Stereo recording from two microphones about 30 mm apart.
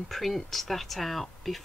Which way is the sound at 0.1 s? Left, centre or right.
Centre.